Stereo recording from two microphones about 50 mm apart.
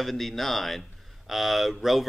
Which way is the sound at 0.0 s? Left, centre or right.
Centre.